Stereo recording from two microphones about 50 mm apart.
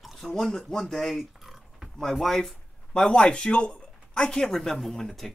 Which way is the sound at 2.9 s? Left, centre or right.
Centre.